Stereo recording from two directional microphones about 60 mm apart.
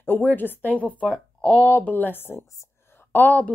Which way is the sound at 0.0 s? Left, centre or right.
Left.